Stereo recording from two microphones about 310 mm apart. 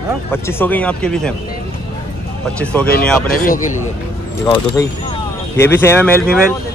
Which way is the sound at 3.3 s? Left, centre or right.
Left.